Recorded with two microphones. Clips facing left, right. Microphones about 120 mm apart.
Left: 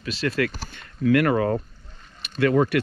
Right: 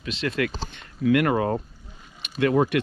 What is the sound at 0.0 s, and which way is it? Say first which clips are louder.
Speech: left 2 dB; 20° right (ahead or behind).